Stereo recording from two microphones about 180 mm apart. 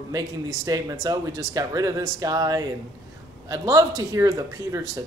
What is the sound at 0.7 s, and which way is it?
Speech, 20° right (ahead or behind).